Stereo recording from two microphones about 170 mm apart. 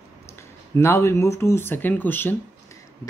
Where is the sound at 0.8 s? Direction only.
15° left (ahead or behind).